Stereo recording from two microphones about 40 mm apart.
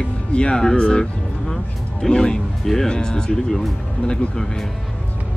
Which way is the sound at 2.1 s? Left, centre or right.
Left.